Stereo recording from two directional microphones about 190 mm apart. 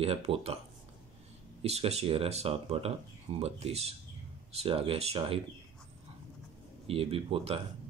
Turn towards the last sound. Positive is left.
turn(degrees=-30)  # may be behind; listen again after turning